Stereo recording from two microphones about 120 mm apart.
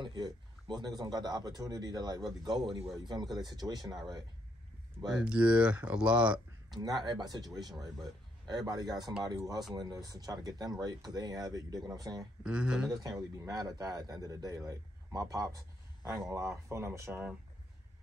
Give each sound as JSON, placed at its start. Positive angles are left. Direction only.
{"t": 0.0, "sound": "speech", "side_deg": -35}
{"t": 5.2, "sound": "speech", "side_deg": -10}
{"t": 6.7, "sound": "speech", "side_deg": -35}
{"t": 12.4, "sound": "speech", "side_deg": -10}
{"t": 12.9, "sound": "speech", "side_deg": -30}